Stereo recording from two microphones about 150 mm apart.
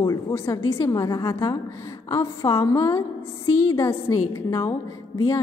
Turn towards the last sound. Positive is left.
turn(degrees=20)  # may be behind; listen again after turning